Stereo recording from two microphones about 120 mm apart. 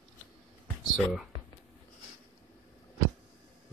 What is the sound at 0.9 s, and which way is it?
Speech, centre (ahead or behind).